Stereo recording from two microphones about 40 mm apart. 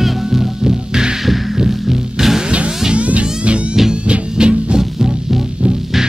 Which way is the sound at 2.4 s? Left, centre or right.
Right.